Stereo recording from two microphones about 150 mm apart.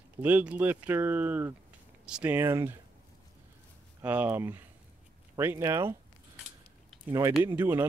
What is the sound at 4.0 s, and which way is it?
Speech, 15° right (ahead or behind).